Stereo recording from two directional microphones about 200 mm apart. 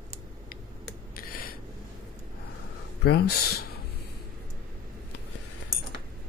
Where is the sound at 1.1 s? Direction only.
45° left (ahead or behind).